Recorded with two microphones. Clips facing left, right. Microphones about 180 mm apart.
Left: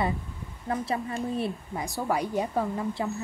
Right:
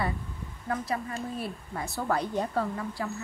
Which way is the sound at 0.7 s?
25° left (ahead or behind).